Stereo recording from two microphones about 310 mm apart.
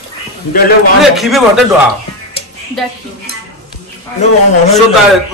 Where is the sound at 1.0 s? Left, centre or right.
Centre.